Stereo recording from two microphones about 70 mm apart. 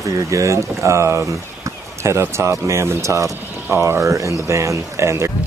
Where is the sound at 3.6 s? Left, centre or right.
Right.